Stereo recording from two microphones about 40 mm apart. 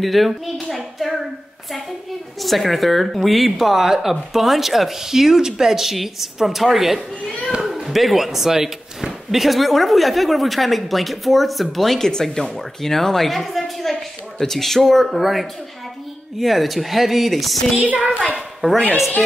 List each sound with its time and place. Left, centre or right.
0.0 s speech: centre
0.7 s clapping: centre
2.4 s speech: centre
17.7 s a child's voice: right
18.6 s a woman's voice: right